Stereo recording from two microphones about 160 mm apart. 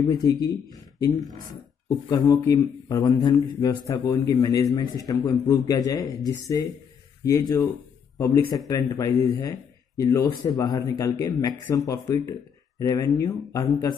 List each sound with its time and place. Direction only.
0.0 s speech: 25° left (ahead or behind)
2.0 s speech: 25° left (ahead or behind)